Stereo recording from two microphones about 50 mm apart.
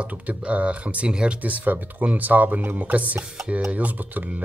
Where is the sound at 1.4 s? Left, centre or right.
Right.